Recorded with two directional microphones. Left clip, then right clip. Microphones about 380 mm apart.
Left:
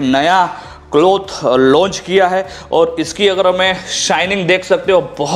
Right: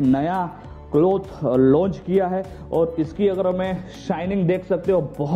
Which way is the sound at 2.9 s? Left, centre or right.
Centre.